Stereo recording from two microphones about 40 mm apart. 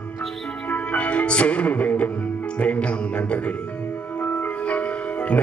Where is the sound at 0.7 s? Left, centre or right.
Left.